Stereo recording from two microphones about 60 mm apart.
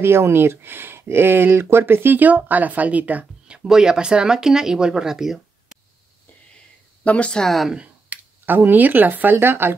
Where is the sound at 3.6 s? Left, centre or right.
Centre.